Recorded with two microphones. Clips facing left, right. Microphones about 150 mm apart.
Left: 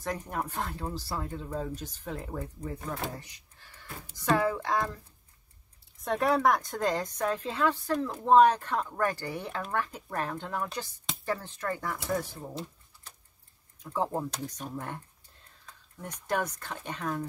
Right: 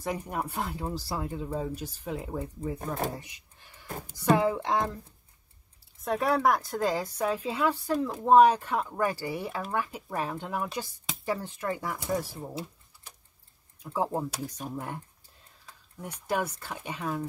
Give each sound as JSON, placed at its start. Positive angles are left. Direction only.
{"t": 0.0, "sound": "a woman's voice", "side_deg": -10}
{"t": 3.2, "sound": "a sound", "side_deg": -15}
{"t": 4.1, "sound": "a woman's voice", "side_deg": -15}
{"t": 5.9, "sound": "a woman's voice", "side_deg": 0}